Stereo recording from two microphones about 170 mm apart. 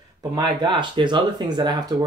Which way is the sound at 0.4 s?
25° right (ahead or behind).